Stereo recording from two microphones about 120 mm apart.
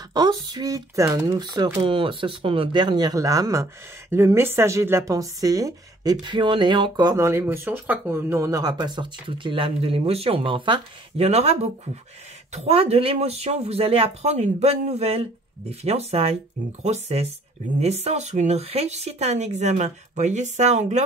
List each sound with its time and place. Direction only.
0.1 s speech: 35° right (ahead or behind); by 21.0 s 75° right (ahead or behind)